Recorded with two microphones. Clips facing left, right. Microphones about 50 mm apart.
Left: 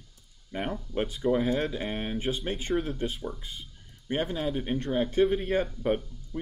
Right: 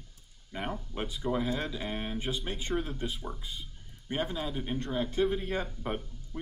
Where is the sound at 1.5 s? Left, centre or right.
Left.